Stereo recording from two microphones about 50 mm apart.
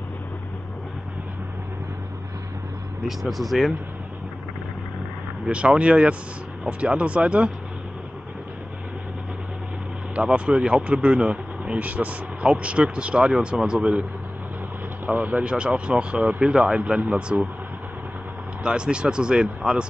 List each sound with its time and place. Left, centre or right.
3.1 s speech: centre
5.5 s speech: right
10.1 s speech: right
15.0 s speech: right
15.4 s speech: right
18.6 s speech: right